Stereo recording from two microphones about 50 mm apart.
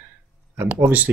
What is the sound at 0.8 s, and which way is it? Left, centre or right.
Speech, right.